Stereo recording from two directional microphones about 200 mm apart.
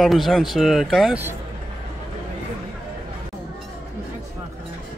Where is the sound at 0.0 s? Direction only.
Centre (ahead or behind).